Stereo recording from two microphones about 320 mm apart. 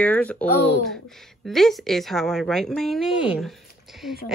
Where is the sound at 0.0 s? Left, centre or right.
Centre.